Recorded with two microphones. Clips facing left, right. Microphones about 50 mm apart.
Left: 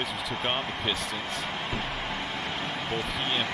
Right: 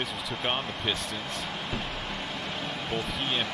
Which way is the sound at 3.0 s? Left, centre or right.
Centre.